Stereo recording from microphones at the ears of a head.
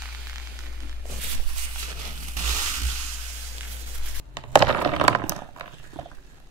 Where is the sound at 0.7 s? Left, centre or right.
Right.